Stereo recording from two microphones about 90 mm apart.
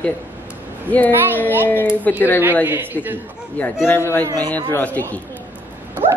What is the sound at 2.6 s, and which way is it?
Speech, 20° right (ahead or behind).